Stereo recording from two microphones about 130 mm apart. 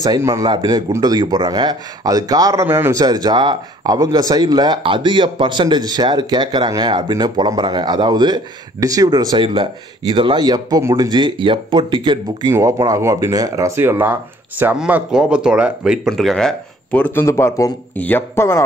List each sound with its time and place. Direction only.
0.0 s speech: 25° right (ahead or behind)
2.6 s a man's voice: 15° right (ahead or behind)
3.0 s speech: 30° right (ahead or behind)
11.1 s speech: 40° right (ahead or behind)
12.4 s speech: 20° right (ahead or behind); by 18.6 s 20° left (ahead or behind)